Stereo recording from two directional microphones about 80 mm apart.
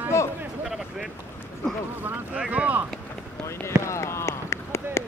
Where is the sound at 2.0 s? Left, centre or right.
Right.